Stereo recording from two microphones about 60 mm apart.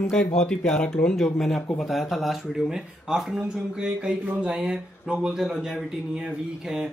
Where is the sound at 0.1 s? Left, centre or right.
Centre.